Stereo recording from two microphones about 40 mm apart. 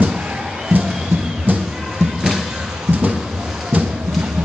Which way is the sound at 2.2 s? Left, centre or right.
Centre.